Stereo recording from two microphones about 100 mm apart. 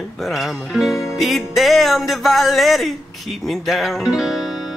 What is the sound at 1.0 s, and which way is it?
Speech, centre (ahead or behind).